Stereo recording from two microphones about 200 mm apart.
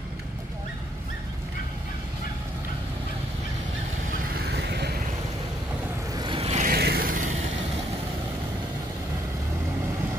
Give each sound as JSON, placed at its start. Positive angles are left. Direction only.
{"t": 4.6, "sound": "vehicle", "side_deg": -55}
{"t": 6.1, "sound": "vehicle", "side_deg": -25}
{"t": 6.7, "sound": "vehicle", "side_deg": -50}